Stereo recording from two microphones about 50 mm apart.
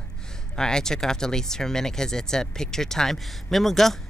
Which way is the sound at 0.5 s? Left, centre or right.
Centre.